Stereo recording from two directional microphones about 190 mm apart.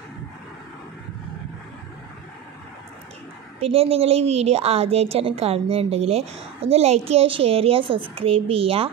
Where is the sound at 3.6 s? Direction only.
30° right (ahead or behind).